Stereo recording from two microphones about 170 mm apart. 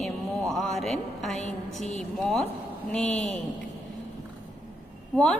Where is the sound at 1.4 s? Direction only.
45° left (ahead or behind).